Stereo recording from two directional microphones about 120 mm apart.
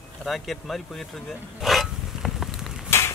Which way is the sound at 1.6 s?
Centre (ahead or behind).